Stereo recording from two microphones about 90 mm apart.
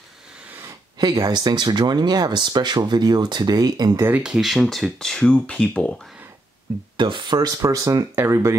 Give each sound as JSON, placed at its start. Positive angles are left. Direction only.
{"t": 0.9, "sound": "speech", "side_deg": -45}
{"t": 4.1, "sound": "speech", "side_deg": -10}
{"t": 7.0, "sound": "speech", "side_deg": -60}
{"t": 7.3, "sound": "speech", "side_deg": -40}